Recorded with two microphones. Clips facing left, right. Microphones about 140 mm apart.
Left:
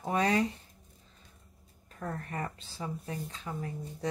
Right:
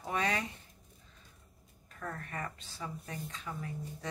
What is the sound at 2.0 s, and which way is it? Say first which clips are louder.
Speech: left 4 dB; 30° left (ahead or behind).